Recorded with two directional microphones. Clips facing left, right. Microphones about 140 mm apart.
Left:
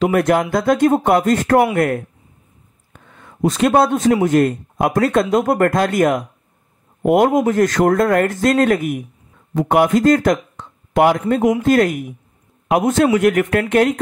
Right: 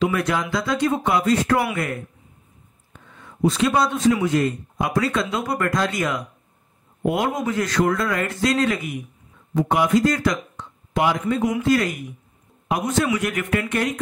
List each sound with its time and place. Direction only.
0.0 s speech: 50° left (ahead or behind)
2.9 s a sound: 50° left (ahead or behind)
4.2 s a man's voice: 55° left (ahead or behind)